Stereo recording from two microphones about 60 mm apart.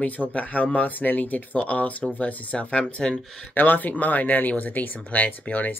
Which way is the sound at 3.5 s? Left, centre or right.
Left.